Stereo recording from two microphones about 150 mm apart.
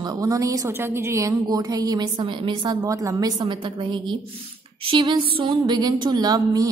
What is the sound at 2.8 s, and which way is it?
A woman's voice, 20° right (ahead or behind).